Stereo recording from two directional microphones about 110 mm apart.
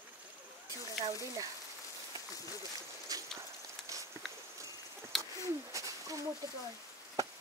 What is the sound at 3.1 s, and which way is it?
Bird, 35° right (ahead or behind).